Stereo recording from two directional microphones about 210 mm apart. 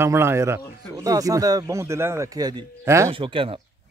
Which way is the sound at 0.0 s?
10° right (ahead or behind).